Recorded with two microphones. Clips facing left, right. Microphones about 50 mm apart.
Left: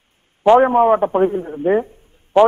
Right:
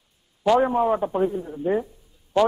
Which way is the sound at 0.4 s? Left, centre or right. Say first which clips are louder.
Left 8 dB; left.